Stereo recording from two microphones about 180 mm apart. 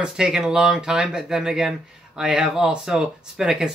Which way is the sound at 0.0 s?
5° right (ahead or behind).